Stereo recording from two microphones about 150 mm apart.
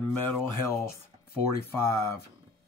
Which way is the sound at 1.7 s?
20° left (ahead or behind).